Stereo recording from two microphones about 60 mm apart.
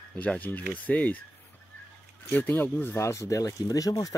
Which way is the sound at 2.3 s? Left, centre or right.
Left.